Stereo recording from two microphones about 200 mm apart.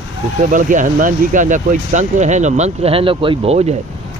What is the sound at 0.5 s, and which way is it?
Speech, 40° right (ahead or behind).